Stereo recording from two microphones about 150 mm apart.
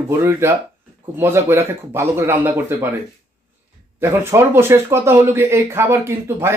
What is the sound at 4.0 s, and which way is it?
Speech, 15° right (ahead or behind).